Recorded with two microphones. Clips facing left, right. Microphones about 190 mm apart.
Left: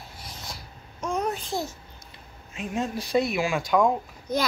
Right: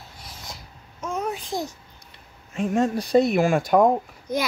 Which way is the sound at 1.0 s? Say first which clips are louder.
Left 1 dB; 5° right (ahead or behind).